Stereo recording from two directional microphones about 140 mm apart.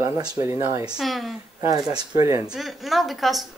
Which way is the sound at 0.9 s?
Centre (ahead or behind).